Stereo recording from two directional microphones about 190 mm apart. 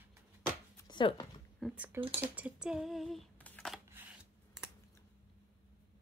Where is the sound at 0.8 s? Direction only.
25° left (ahead or behind).